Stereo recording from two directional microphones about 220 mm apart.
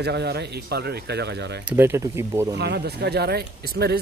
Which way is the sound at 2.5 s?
50° right (ahead or behind).